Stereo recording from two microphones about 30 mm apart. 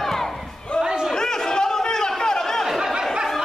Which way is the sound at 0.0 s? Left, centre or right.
Centre.